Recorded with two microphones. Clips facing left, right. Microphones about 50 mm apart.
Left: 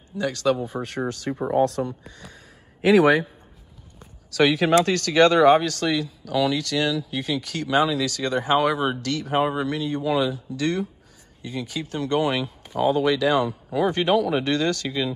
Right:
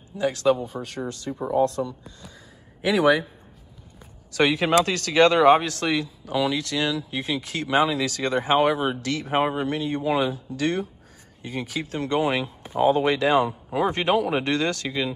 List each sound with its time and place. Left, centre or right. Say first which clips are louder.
0.2 s speech: right 1 dB; centre
0.7 s speech: left 3 dB; centre
1.3 s speech: left 3 dB; left
2.8 s speech: left 3 dB; left
4.3 s speech: left 2 dB; centre; by 10.3 s right
10.3 s speech: even; right
12.1 s speech: left 1 dB; right